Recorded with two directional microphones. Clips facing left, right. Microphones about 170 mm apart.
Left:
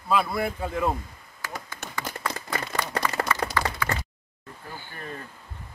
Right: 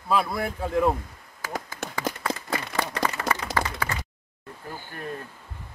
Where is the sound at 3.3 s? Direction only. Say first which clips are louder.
Right 2 dB; 90° right.